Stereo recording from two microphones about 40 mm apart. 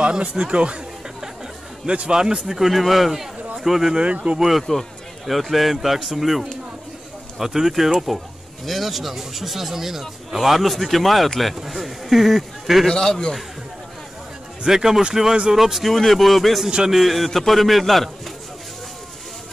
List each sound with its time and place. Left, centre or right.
0.0 s speech: right
1.9 s a man's voice: right; by 3.9 s centre
3.9 s speech: right
4.4 s a man's voice: centre
12.9 s a man's voice: centre
14.7 s a man's voice: centre
15.9 s speech: centre